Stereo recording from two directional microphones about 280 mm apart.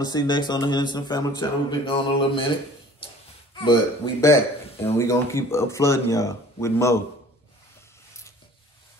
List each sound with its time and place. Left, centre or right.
0.0 s a man's voice: centre
3.5 s a man's voice: centre